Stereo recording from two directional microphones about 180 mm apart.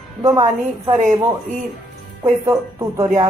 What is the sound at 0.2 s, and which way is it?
Speech, 20° right (ahead or behind).